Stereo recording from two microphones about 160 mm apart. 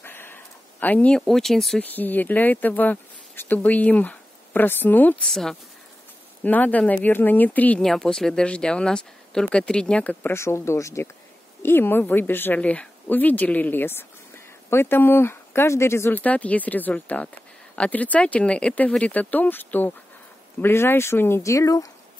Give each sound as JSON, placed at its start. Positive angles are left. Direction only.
{"t": 0.0, "sound": "speech", "side_deg": 15}